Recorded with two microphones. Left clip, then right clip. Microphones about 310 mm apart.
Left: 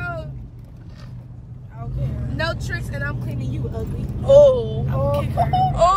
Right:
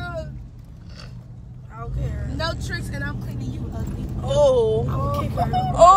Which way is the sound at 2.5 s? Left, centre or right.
Left.